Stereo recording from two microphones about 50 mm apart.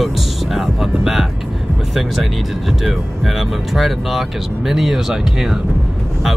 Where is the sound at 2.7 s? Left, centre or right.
Centre.